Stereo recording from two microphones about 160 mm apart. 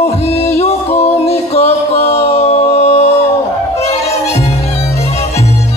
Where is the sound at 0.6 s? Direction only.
40° left (ahead or behind).